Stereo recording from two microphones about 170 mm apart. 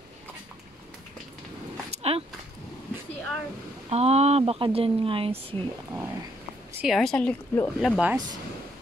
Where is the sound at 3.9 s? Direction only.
40° right (ahead or behind).